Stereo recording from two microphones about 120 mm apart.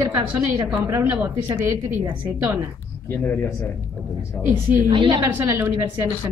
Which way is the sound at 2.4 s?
25° right (ahead or behind).